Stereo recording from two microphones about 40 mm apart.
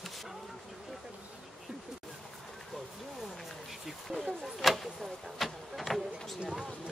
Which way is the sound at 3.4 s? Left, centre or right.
Centre.